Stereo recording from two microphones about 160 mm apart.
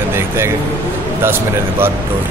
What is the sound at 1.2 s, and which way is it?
Speech, 15° right (ahead or behind).